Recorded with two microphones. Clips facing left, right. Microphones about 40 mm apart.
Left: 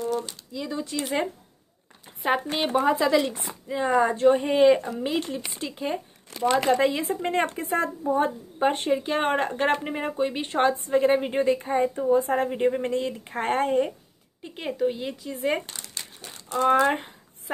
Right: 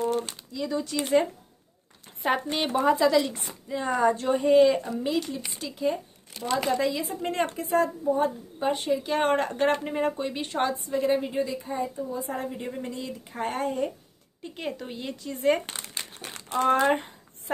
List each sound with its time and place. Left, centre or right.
0.0 s a sound: right
0.5 s speech: centre
2.0 s a sound: centre
2.5 s a woman's voice: centre; by 9.0 s left
9.0 s speech: centre
10.4 s a woman's voice: left
11.3 s a woman's voice: left
14.4 s speech: centre
15.7 s crumpling: right
16.7 s speech: centre